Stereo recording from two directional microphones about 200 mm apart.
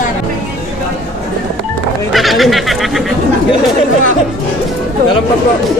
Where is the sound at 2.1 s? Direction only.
Centre (ahead or behind).